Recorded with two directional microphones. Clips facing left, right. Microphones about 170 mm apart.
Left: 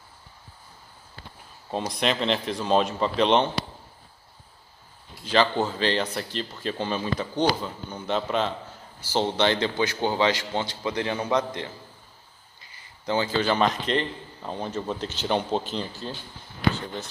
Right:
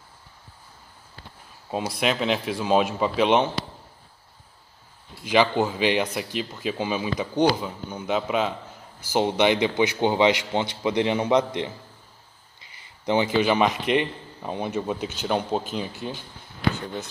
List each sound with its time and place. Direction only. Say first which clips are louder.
1.7 s speech: right 1 dB; 5° right (ahead or behind)
5.2 s a man's voice: right 2 dB; 10° right (ahead or behind)